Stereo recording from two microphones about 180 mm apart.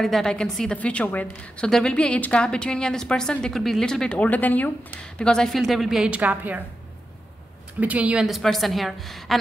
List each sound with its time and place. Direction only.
0.0 s a woman's voice: 5° left (ahead or behind)
7.8 s a woman's voice: 5° right (ahead or behind)